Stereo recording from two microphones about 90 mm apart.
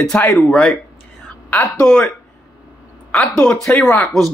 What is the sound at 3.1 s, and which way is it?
Speech, 10° left (ahead or behind).